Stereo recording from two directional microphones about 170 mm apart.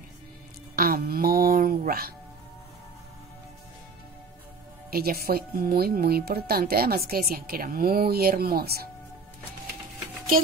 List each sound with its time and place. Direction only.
0.7 s music: 60° right (ahead or behind)
4.9 s speech: 60° right (ahead or behind)